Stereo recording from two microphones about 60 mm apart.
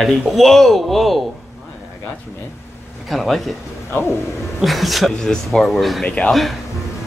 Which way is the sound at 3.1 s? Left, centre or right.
Centre.